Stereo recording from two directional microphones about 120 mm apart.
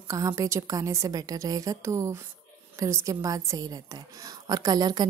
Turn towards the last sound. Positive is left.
turn(degrees=-35)  # may be behind; listen again after turning